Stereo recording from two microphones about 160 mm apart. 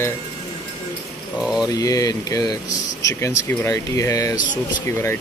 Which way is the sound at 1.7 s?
20° left (ahead or behind).